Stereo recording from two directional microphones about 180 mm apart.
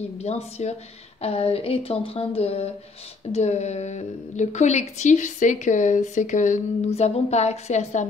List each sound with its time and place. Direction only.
0.2 s a woman's voice: 35° left (ahead or behind)